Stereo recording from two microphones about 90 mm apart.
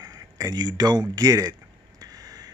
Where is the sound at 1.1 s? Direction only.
45° right (ahead or behind).